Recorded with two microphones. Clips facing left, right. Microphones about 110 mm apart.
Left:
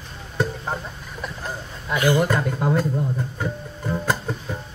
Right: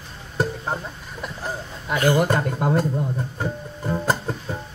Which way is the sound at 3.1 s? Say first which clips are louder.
Even; 30° right (ahead or behind).